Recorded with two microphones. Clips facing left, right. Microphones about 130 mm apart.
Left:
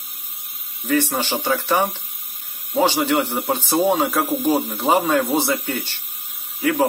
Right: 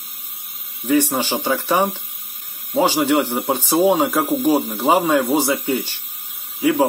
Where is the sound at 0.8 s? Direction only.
15° right (ahead or behind).